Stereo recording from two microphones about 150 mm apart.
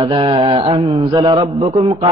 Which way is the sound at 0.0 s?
35° right (ahead or behind).